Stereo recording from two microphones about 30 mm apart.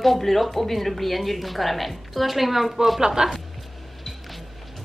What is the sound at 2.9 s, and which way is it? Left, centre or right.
Speech, right.